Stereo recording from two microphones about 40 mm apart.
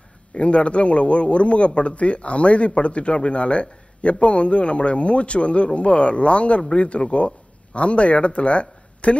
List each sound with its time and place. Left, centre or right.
0.3 s a man's voice: left